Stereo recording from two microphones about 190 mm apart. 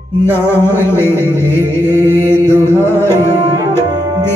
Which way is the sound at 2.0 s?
10° right (ahead or behind).